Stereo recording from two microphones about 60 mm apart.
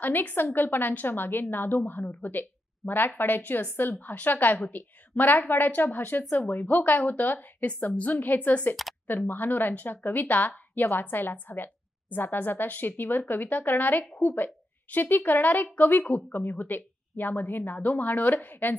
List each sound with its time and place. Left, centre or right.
0.0 s a woman's voice: left